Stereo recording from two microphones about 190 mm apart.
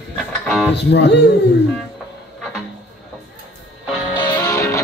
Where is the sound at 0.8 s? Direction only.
65° left (ahead or behind).